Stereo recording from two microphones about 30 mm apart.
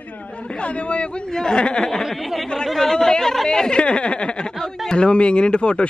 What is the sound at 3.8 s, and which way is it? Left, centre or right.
Speech, left.